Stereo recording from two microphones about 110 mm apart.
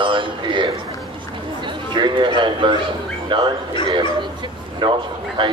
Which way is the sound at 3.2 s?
45° right (ahead or behind).